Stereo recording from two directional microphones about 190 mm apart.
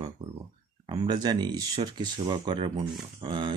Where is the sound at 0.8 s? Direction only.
20° right (ahead or behind).